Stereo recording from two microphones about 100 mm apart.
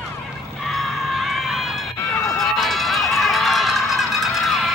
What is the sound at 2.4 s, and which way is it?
Run, centre (ahead or behind).